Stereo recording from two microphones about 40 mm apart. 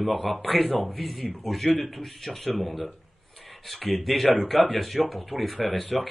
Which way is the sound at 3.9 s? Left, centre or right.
Centre.